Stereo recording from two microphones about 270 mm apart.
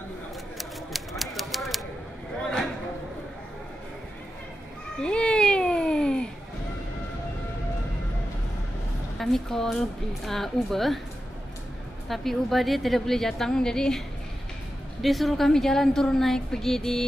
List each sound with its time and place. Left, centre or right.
0.6 s typewriter: centre
5.0 s cat: centre
9.2 s a woman's voice: centre
12.1 s a woman's voice: centre